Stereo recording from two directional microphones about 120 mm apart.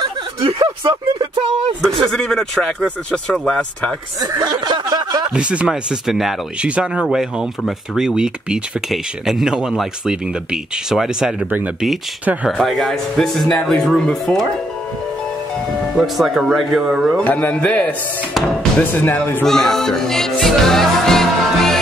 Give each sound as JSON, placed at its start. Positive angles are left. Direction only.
{"t": 0.0, "sound": "a sound", "side_deg": -40}
{"t": 1.8, "sound": "speech", "side_deg": 0}
{"t": 4.2, "sound": "snicker", "side_deg": -35}
{"t": 5.3, "sound": "speech", "side_deg": -10}
{"t": 16.0, "sound": "speech", "side_deg": 0}
{"t": 17.2, "sound": "speech", "side_deg": 10}
{"t": 19.4, "sound": "music", "side_deg": 5}